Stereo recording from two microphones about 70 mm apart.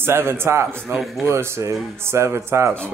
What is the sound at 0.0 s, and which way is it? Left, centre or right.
Speech, right.